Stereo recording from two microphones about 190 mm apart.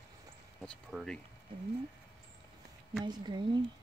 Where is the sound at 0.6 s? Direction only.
Centre (ahead or behind).